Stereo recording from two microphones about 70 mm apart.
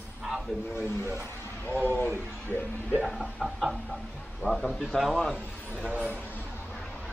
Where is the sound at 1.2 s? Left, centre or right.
Left.